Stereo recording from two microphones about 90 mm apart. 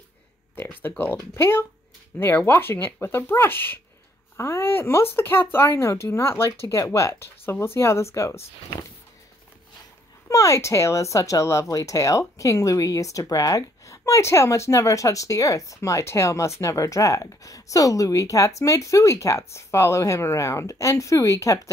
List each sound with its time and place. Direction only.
0.6 s speech: 20° left (ahead or behind)
10.2 s speech: 35° left (ahead or behind)